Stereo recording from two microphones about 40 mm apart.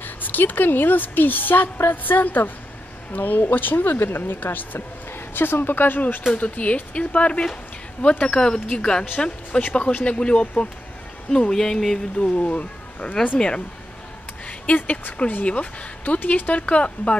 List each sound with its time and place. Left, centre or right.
0.0 s a woman's voice: left
6.3 s speech: left
8.4 s speech: centre
11.2 s speech: centre
12.2 s speech: left
14.8 s speech: left
15.4 s speech: left